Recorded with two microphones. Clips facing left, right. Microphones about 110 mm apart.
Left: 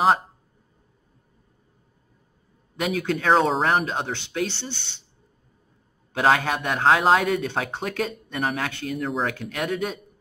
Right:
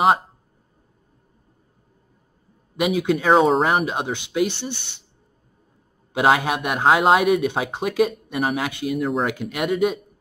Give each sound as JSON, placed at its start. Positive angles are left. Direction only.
{"t": 2.8, "sound": "speech", "side_deg": -10}
{"t": 6.1, "sound": "speech", "side_deg": -10}
{"t": 9.3, "sound": "speech", "side_deg": -15}